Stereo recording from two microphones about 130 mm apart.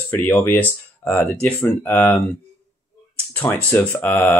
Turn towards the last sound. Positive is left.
turn(degrees=15)  # may be behind; listen again after turning